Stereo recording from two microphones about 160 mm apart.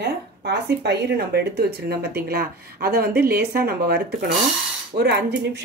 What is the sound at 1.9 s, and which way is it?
Speech, 75° right (ahead or behind).